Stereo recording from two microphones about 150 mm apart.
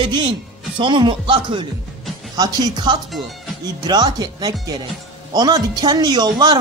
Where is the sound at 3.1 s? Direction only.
Centre (ahead or behind).